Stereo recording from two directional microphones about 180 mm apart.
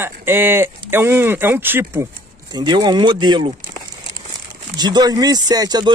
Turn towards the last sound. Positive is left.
turn(degrees=-20)  # may be behind; listen again after turning